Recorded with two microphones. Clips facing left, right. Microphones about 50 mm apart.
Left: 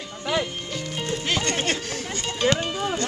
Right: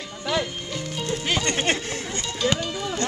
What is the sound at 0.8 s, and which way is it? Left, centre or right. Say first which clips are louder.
Music: even; left.